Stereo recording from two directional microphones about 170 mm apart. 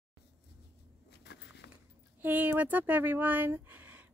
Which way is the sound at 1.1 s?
85° left.